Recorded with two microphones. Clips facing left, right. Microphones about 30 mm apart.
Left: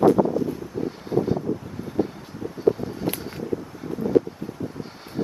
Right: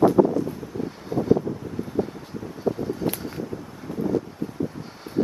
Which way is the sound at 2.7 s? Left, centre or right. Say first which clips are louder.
Left 5 dB; left.